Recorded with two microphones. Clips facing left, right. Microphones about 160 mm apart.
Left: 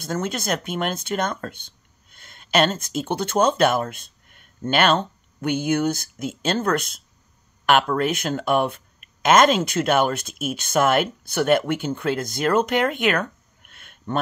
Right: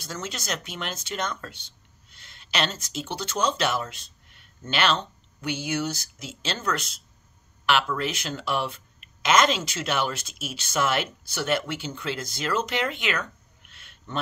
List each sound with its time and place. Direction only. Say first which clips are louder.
0.0 s speech: left 9 dB; 55° left (ahead or behind)